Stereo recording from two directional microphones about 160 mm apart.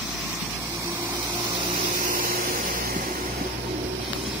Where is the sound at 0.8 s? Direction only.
20° right (ahead or behind).